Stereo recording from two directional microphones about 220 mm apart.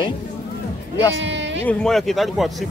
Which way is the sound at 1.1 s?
55° right (ahead or behind).